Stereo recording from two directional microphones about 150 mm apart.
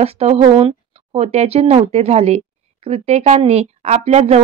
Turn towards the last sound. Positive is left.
turn(degrees=-45)  # may be behind; listen again after turning